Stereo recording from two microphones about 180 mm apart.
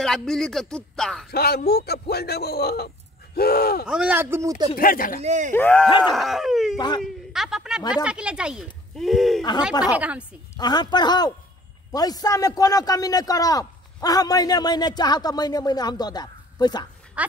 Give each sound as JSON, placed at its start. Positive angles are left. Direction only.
{"t": 0.0, "sound": "speech", "side_deg": 5}
{"t": 1.3, "sound": "speech", "side_deg": 60}
{"t": 3.8, "sound": "speech", "side_deg": -5}
{"t": 4.7, "sound": "speech", "side_deg": 50}
{"t": 5.2, "sound": "speech", "side_deg": -40}
{"t": 5.5, "sound": "speech", "side_deg": 10}
{"t": 5.9, "sound": "a man's voice", "side_deg": 25}
{"t": 6.1, "sound": "a man's voice", "side_deg": 0}
{"t": 10.6, "sound": "a man's voice", "side_deg": 25}
{"t": 17.2, "sound": "speech", "side_deg": -5}